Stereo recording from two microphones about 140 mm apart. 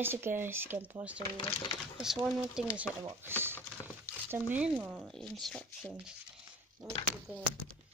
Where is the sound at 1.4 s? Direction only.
35° left (ahead or behind).